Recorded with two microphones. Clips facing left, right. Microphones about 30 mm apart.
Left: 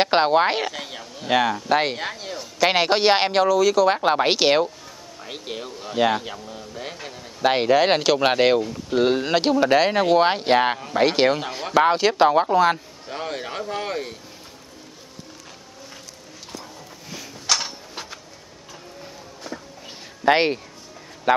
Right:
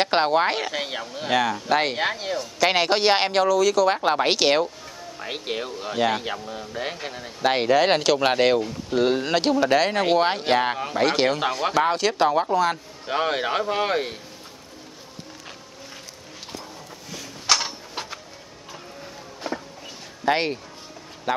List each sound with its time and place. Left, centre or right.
0.0 s speech: centre
0.7 s a man's voice: right
1.3 s speech: centre
2.0 s speech: centre
2.3 s speech: centre
5.2 s a man's voice: right
7.4 s speech: centre
13.0 s a man's voice: right
17.5 s a sound: centre
19.4 s a sound: right
20.2 s speech: left